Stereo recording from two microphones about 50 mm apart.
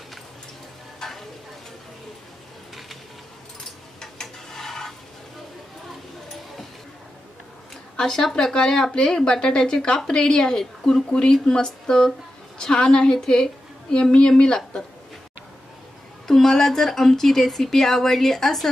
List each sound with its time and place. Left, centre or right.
0.9 s stir: centre
4.0 s a sound: centre
7.9 s a woman's voice: centre
16.3 s speech: centre